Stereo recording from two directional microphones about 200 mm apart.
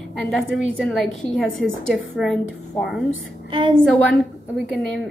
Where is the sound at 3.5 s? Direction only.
25° right (ahead or behind).